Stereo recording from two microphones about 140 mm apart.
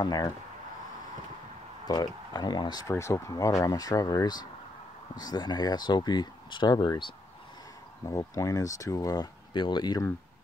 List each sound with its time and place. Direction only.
0.0 s speech: 25° left (ahead or behind)
1.9 s speech: 30° left (ahead or behind)